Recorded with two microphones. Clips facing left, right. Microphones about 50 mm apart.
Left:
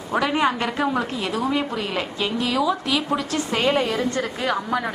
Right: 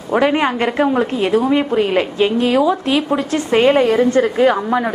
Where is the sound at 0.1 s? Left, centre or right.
Right.